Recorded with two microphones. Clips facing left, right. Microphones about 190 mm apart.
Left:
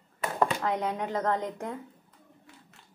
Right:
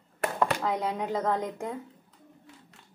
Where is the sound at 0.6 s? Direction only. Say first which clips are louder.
Even; 5° right (ahead or behind).